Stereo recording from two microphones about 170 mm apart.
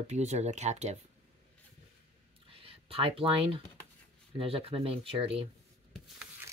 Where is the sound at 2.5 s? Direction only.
35° right (ahead or behind).